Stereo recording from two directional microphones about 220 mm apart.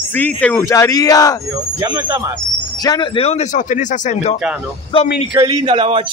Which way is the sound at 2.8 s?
20° left (ahead or behind).